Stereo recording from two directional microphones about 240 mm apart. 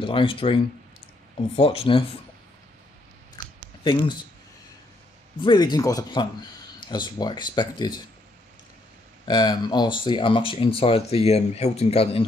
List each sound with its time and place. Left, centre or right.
0.0 s speech: left
1.6 s speech: left
5.4 s speech: centre
9.3 s speech: centre